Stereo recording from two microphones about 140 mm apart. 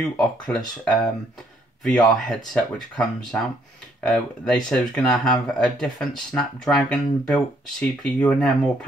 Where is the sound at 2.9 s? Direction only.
5° left (ahead or behind).